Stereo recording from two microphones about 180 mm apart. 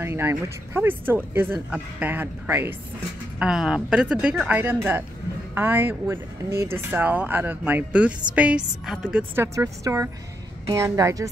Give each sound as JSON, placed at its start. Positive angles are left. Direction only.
{"t": 0.0, "sound": "a woman's voice", "side_deg": -15}